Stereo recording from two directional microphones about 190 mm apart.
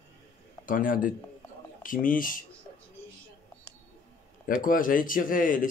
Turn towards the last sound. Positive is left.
turn(degrees=45)  # may be behind; listen again after turning